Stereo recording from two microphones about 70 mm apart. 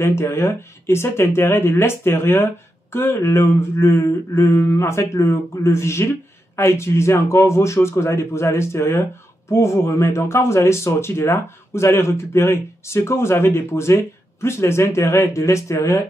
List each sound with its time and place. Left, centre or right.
0.0 s speech: left